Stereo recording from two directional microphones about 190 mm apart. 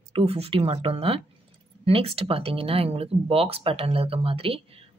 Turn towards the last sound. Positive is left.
turn(degrees=-30)  # may be behind; listen again after turning